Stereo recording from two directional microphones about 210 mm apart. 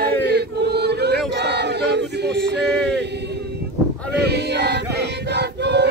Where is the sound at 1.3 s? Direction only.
55° right (ahead or behind).